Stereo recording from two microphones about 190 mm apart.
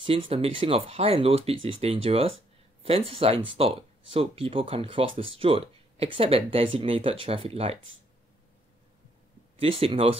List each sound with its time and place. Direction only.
0.0 s speech: 30° right (ahead or behind)
9.6 s speech: 30° right (ahead or behind)